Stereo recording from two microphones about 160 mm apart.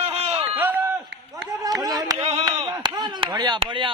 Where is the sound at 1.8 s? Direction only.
25° right (ahead or behind).